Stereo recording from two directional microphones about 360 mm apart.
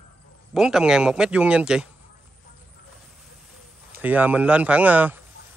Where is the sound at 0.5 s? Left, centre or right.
Centre.